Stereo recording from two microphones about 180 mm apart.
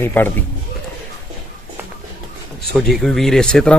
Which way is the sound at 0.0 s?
10° left (ahead or behind).